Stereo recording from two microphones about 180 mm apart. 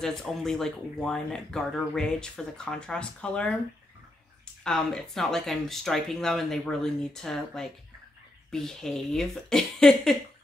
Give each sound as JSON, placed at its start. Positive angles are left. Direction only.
{"t": 0.0, "sound": "speech", "side_deg": 0}
{"t": 4.6, "sound": "speech", "side_deg": 5}